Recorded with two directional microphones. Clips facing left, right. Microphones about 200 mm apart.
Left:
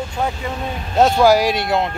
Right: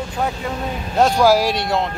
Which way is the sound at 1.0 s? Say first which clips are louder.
Left 1 dB; centre (ahead or behind).